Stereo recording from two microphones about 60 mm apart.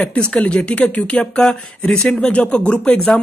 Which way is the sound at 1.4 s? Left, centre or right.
Centre.